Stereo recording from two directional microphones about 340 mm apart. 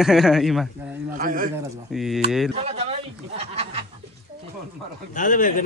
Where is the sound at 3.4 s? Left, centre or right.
Centre.